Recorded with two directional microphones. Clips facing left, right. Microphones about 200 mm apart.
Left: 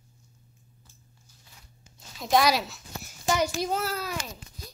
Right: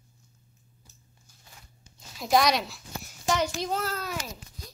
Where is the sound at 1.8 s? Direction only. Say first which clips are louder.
Right 1 dB; centre (ahead or behind).